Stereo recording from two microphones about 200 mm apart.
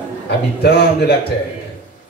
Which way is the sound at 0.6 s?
55° left (ahead or behind).